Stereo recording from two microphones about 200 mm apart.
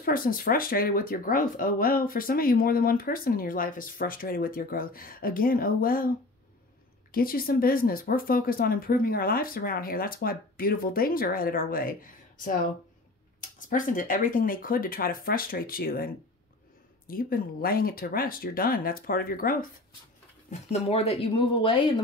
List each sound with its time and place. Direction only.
0.0 s speech: 45° left (ahead or behind)
7.1 s speech: 45° left (ahead or behind)
17.1 s speech: 45° left (ahead or behind)
20.7 s speech: 30° left (ahead or behind)